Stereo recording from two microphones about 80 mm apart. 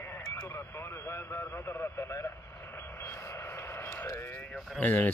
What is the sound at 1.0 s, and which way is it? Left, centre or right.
A man's voice, left.